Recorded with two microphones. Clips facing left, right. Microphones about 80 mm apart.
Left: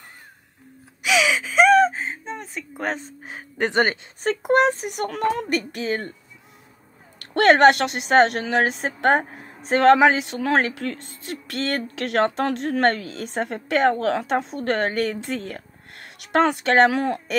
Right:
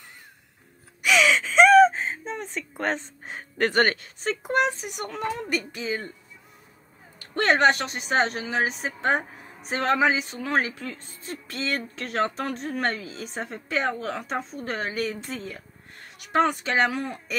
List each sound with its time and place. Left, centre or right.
1.0 s gasp: centre
3.5 s speech: centre
4.2 s speech: left
7.2 s a woman's voice: left
11.9 s a woman's voice: left